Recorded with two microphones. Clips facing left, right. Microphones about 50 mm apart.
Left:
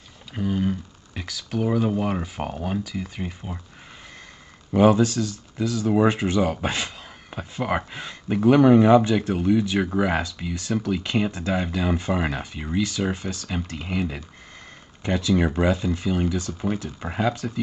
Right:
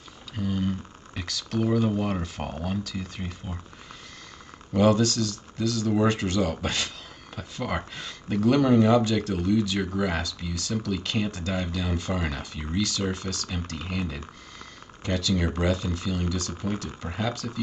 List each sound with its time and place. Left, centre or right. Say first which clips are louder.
0.3 s speech: left 4 dB; centre
4.7 s speech: left 4 dB; centre